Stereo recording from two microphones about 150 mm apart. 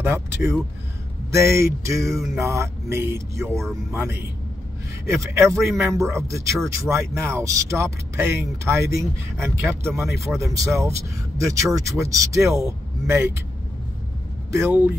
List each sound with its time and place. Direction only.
0.0 s speech: 15° right (ahead or behind)
14.5 s speech: 15° right (ahead or behind)